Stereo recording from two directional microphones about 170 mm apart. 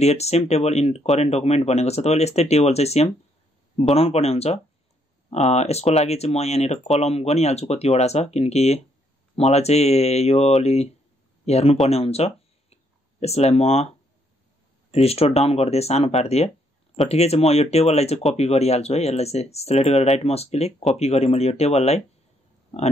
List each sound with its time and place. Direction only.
0.0 s speech: 40° left (ahead or behind)
14.9 s speech: 35° left (ahead or behind)